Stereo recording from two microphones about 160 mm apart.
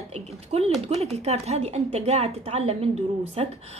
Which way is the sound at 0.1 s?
40° right (ahead or behind).